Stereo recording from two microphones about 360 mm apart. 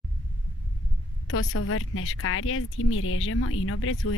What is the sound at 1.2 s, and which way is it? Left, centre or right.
Speech, left.